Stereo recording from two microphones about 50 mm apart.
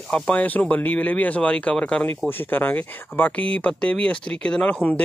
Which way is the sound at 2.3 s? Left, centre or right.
Left.